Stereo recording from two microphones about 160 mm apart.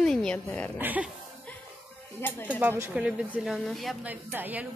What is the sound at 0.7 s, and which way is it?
Speech, 10° right (ahead or behind).